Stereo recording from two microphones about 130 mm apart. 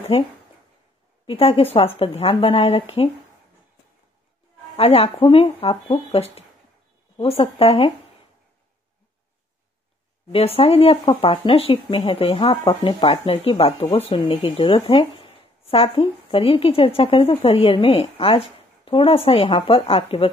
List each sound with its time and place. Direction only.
0.1 s speech: 50° left (ahead or behind)
4.7 s speech: 50° left (ahead or behind)
10.3 s speech: 50° left (ahead or behind)